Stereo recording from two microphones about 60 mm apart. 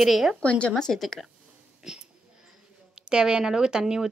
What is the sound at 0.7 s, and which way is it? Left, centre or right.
Speech, centre.